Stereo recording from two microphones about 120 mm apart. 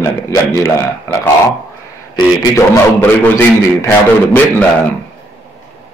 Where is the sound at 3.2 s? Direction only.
15° left (ahead or behind).